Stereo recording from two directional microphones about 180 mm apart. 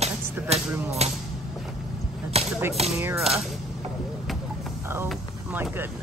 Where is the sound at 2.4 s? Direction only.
35° right (ahead or behind).